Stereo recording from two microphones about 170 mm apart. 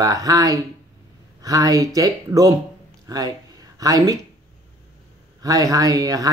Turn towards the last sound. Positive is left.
turn(degrees=-20)  # may be behind; listen again after turning